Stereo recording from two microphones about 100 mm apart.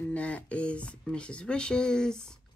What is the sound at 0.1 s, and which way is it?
Speech, 15° left (ahead or behind).